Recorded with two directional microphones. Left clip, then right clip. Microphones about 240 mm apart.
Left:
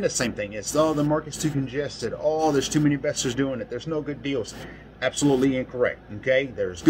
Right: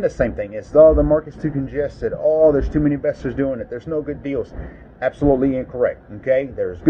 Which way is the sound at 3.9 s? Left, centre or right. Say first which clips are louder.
Right 5 dB; left.